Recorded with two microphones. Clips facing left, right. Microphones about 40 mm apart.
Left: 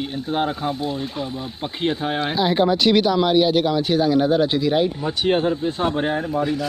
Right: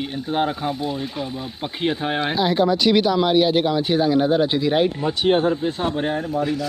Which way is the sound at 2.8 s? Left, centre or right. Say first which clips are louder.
Even; centre.